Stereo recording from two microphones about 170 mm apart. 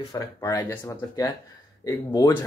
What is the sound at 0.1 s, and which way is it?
Speech, 20° left (ahead or behind).